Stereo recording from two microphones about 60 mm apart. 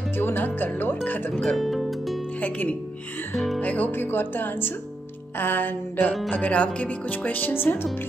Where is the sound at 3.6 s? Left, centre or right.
Left.